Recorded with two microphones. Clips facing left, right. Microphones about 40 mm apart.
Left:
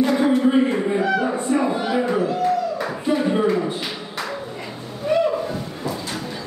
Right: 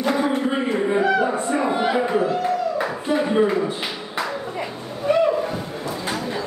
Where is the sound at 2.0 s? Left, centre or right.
Centre.